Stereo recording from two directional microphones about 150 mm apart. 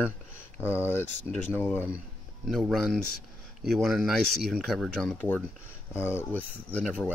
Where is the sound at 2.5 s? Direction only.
Centre (ahead or behind).